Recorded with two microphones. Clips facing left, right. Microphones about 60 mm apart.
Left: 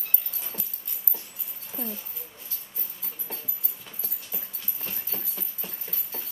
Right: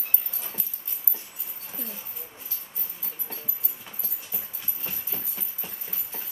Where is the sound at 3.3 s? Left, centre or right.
Centre.